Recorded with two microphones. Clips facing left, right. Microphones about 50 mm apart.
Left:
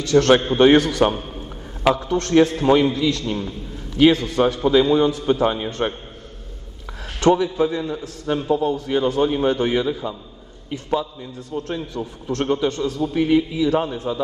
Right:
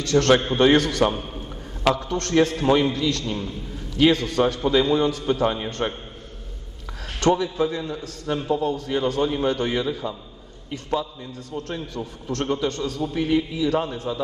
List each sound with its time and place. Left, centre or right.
0.1 s a man's voice: left
7.2 s a man's voice: centre
11.3 s a man's voice: left
13.1 s a man's voice: centre
14.1 s a man's voice: left